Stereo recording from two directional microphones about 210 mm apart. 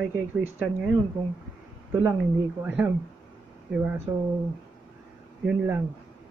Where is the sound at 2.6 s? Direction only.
5° right (ahead or behind).